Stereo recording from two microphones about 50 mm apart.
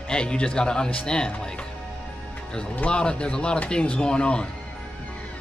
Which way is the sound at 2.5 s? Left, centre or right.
Centre.